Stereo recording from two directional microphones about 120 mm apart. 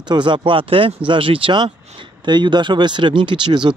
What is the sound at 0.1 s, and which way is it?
Speech, 40° right (ahead or behind).